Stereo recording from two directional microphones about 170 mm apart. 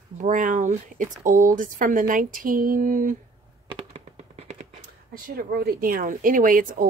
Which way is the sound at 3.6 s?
35° right (ahead or behind).